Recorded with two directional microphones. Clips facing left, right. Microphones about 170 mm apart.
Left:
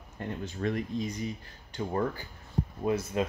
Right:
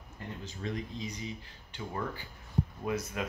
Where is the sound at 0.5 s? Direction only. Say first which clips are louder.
Left 6 dB; 60° left (ahead or behind).